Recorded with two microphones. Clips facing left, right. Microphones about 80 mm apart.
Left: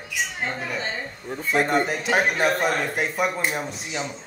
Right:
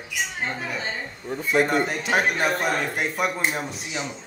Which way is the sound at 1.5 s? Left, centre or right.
Centre.